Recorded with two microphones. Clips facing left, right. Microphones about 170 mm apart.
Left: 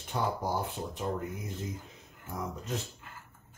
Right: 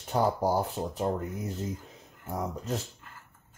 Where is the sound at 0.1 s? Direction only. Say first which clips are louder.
Right 6 dB; 40° right (ahead or behind).